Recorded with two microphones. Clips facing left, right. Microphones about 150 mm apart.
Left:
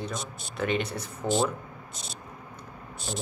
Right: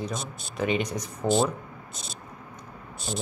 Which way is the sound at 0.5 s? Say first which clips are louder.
Right 2 dB; 5° right (ahead or behind).